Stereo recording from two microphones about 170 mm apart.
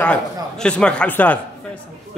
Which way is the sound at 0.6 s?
5° left (ahead or behind).